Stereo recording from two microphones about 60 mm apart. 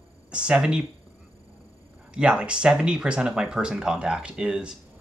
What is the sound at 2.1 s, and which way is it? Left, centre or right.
Speech, centre.